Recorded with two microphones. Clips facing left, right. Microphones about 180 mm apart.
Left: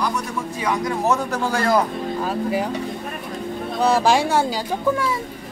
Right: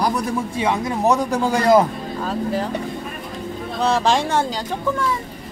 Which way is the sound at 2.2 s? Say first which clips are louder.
Right 1 dB; 10° left (ahead or behind).